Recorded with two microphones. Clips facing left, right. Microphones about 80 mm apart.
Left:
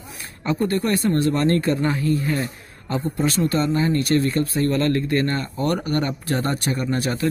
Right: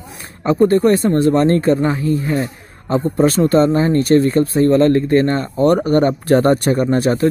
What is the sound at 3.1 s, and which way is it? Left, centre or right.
Speech, right.